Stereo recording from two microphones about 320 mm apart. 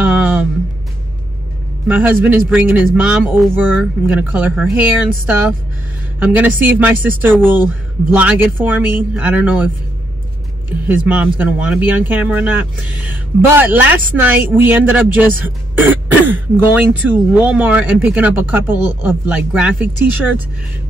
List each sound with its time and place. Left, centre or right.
0.0 s music: centre
1.9 s speech: centre
10.9 s speech: centre